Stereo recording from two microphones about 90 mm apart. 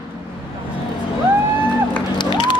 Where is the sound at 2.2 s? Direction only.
60° left (ahead or behind).